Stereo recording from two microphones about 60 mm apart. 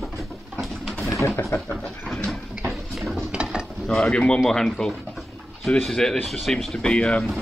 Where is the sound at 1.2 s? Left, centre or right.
Left.